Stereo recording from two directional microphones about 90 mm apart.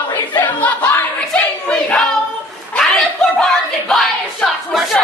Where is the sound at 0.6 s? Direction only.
20° left (ahead or behind).